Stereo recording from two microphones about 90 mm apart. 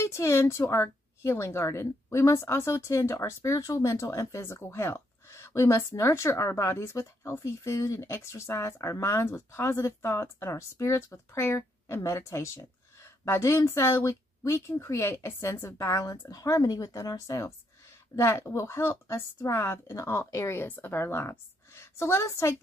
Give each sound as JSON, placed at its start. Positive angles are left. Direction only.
{"t": 0.0, "sound": "a woman's voice", "side_deg": 30}